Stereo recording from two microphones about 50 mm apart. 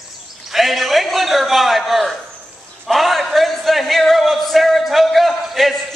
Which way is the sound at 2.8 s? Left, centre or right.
Centre.